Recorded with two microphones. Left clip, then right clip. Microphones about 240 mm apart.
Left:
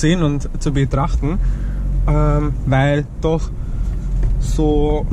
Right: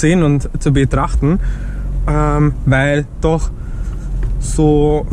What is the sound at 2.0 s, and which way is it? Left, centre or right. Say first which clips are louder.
Speech: right 4 dB; right.